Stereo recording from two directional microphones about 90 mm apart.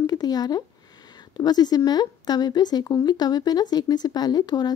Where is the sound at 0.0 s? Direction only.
45° left (ahead or behind).